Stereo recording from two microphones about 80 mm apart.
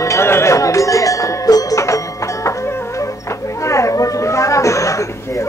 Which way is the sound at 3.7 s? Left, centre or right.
Left.